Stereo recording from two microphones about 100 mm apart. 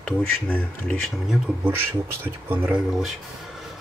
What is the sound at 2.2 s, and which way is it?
Speech, 20° right (ahead or behind).